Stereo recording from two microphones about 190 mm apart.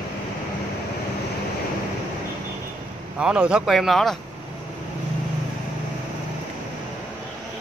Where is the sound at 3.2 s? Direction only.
5° right (ahead or behind).